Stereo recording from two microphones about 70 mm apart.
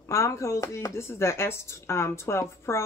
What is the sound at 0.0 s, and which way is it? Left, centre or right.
Speech, left.